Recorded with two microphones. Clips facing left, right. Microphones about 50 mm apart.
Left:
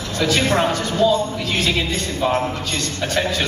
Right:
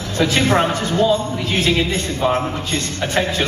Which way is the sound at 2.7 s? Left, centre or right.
Right.